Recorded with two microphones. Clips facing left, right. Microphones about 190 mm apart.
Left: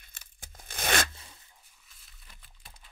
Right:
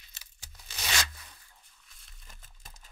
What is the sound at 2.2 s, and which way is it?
Crumpling, 45° right (ahead or behind).